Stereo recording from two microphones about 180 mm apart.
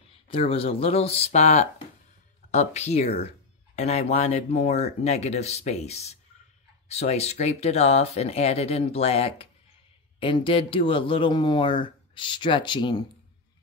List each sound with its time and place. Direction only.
0.1 s speech: 30° left (ahead or behind)